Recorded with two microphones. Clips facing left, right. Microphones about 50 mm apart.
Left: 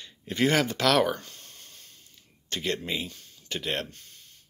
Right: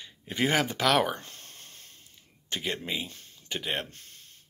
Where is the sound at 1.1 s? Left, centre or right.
Right.